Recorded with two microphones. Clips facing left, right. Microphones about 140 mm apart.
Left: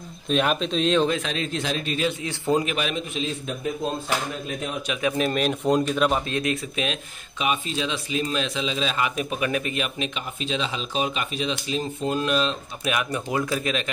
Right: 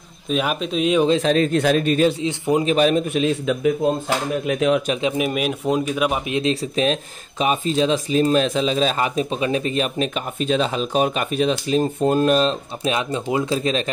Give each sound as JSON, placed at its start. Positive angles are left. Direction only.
{"t": 0.3, "sound": "speech", "side_deg": -5}
{"t": 1.2, "sound": "a man's voice", "side_deg": -45}
{"t": 2.2, "sound": "a man's voice", "side_deg": -15}
{"t": 2.6, "sound": "speech", "side_deg": -35}
{"t": 3.1, "sound": "a man's voice", "side_deg": -70}
{"t": 4.5, "sound": "speech", "side_deg": -85}
{"t": 5.0, "sound": "a man's voice", "side_deg": -10}
{"t": 6.4, "sound": "speech", "side_deg": -35}
{"t": 12.8, "sound": "speech", "side_deg": -25}